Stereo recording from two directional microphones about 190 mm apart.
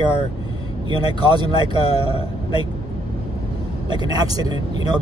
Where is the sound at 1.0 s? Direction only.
25° right (ahead or behind).